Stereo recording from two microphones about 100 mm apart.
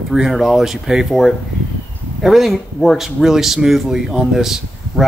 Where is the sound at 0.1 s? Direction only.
Centre (ahead or behind).